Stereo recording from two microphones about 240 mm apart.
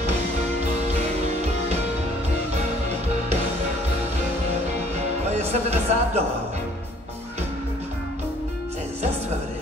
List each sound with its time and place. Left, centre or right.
5.3 s speech: right